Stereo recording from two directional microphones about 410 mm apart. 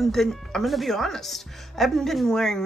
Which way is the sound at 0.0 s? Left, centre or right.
Centre.